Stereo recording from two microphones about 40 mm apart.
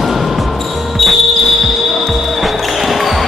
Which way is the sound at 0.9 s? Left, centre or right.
Centre.